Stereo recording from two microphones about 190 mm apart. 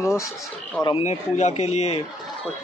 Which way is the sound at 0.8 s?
35° left (ahead or behind).